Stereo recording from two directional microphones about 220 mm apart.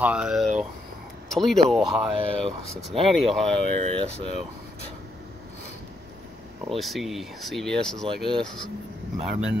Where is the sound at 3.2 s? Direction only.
Centre (ahead or behind).